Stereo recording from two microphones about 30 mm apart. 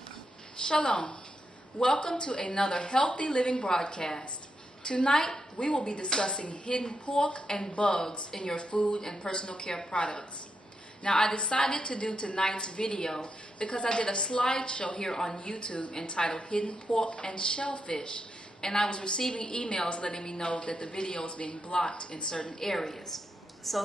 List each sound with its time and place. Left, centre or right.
0.7 s a woman's voice: left
5.1 s a woman's voice: centre
5.6 s a woman's voice: left
6.0 s a woman's voice: left
6.4 s a woman's voice: left
15.0 s a woman's voice: centre
15.3 s a woman's voice: left
15.9 s a woman's voice: left
17.6 s speech: left
18.6 s a woman's voice: left
18.9 s a woman's voice: left
22.6 s a woman's voice: centre
23.7 s a woman's voice: centre